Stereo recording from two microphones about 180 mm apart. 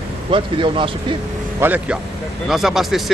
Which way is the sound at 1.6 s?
10° right (ahead or behind).